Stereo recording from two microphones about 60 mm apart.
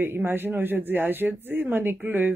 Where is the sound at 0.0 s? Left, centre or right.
Right.